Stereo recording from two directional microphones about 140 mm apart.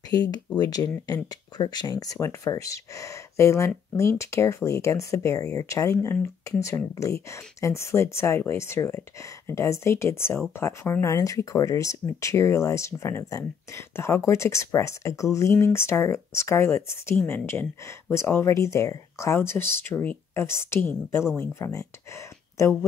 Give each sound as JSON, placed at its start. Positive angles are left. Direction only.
{"t": 0.1, "sound": "speech", "side_deg": 25}